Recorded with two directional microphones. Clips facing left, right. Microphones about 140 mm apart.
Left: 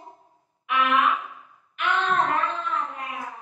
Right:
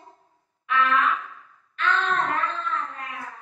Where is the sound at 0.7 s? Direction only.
15° left (ahead or behind).